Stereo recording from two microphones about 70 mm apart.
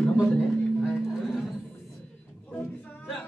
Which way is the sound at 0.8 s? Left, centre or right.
Centre.